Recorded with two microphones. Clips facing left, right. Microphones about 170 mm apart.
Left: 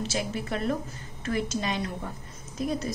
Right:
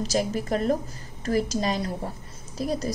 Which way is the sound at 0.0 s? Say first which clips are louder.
Right 5 dB; 40° right (ahead or behind).